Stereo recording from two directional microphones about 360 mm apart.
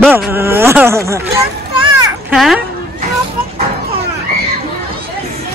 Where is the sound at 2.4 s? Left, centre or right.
Centre.